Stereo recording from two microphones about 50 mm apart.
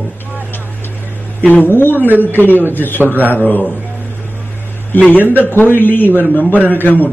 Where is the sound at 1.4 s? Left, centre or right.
Left.